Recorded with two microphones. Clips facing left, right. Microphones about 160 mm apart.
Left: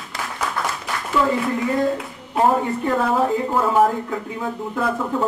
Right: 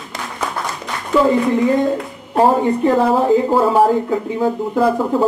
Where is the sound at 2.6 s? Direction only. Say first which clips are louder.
Right 7 dB; 30° right (ahead or behind).